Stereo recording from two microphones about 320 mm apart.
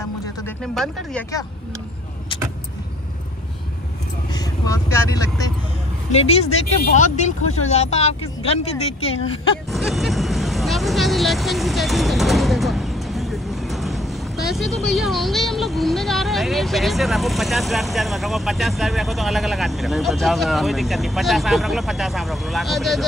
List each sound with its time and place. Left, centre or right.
0.7 s speech: centre
4.3 s speech: centre
9.7 s speech: centre